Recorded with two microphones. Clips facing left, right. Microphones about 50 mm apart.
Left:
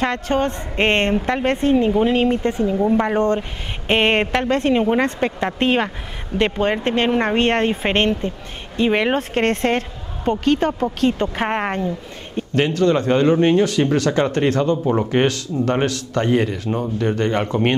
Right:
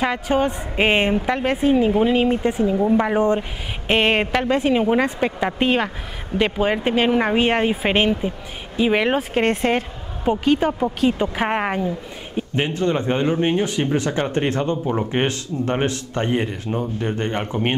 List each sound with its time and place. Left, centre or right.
0.0 s a woman's voice: centre
12.5 s a man's voice: right